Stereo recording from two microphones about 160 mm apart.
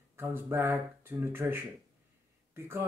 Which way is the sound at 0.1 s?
15° right (ahead or behind).